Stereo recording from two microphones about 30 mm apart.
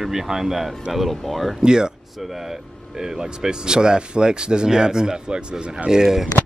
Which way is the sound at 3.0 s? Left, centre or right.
Right.